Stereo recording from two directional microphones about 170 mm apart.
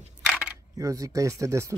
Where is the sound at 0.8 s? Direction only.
20° right (ahead or behind).